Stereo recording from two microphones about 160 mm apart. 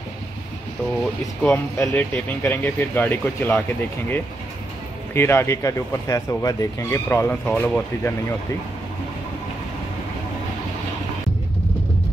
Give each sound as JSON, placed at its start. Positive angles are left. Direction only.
{"t": 1.4, "sound": "speech", "side_deg": 10}
{"t": 5.1, "sound": "speech", "side_deg": 15}